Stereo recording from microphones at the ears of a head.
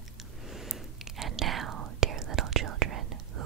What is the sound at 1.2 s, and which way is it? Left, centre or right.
Whispering, right.